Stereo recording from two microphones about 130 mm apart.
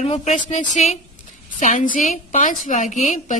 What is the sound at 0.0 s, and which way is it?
Speech, 65° left (ahead or behind).